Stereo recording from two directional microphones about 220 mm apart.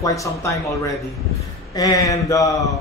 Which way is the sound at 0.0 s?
15° left (ahead or behind).